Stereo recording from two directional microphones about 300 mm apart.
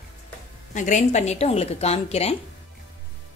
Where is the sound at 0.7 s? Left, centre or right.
Left.